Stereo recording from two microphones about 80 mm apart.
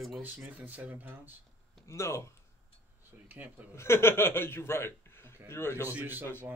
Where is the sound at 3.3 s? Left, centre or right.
Right.